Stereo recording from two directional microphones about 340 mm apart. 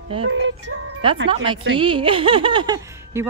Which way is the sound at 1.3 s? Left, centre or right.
Centre.